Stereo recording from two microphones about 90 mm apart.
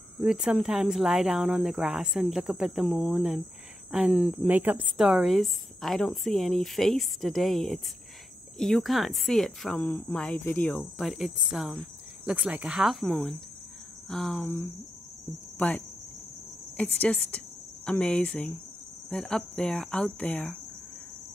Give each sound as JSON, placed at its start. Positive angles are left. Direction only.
{"t": 0.2, "sound": "speech", "side_deg": -5}
{"t": 4.5, "sound": "a woman's voice", "side_deg": -20}
{"t": 4.9, "sound": "speech", "side_deg": -5}
{"t": 9.8, "sound": "speech", "side_deg": 20}
{"t": 10.8, "sound": "speech", "side_deg": 0}
{"t": 14.4, "sound": "speech", "side_deg": 30}
{"t": 15.5, "sound": "speech", "side_deg": 15}